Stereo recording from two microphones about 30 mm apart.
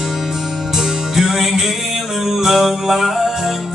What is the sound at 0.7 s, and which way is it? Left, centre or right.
Music, centre.